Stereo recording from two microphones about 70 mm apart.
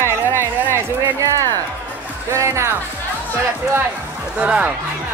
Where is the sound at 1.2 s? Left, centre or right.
Right.